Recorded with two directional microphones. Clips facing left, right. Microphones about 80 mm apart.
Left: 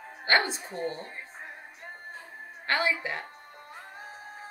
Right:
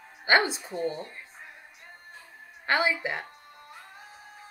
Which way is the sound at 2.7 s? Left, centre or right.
Centre.